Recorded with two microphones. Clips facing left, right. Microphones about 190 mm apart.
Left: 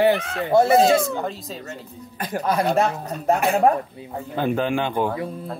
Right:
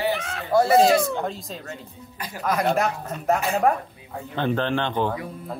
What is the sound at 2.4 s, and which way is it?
Speech, 30° left (ahead or behind).